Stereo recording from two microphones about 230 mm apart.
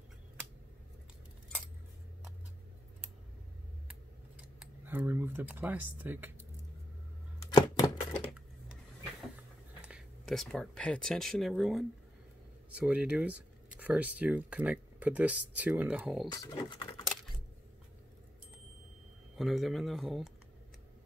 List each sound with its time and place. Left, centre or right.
4.4 s speech: centre
7.5 s typewriter: centre
9.8 s speech: centre
16.3 s speech: centre
19.3 s speech: centre